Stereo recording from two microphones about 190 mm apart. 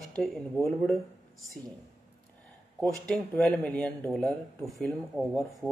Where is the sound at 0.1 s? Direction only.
Centre (ahead or behind).